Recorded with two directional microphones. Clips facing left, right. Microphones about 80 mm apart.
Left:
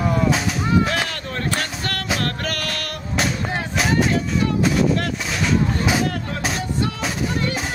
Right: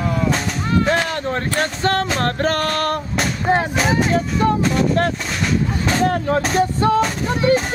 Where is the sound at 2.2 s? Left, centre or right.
Right.